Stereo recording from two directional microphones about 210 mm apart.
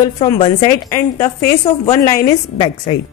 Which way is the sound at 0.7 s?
15° left (ahead or behind).